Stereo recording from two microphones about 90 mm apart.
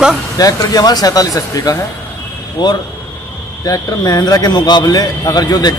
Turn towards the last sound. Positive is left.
turn(degrees=45)  # may be behind; listen again after turning